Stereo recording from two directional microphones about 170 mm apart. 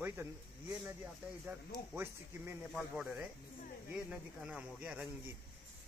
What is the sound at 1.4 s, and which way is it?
Speech, 10° right (ahead or behind).